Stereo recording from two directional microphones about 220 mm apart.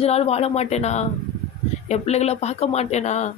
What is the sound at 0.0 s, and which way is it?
A woman's voice, 30° left (ahead or behind).